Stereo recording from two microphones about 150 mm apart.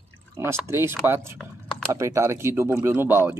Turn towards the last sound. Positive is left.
turn(degrees=-15)  # may be behind; listen again after turning